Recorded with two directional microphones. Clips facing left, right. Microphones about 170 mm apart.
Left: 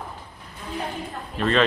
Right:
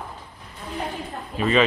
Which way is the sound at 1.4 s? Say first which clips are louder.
Right 1 dB; 5° right (ahead or behind).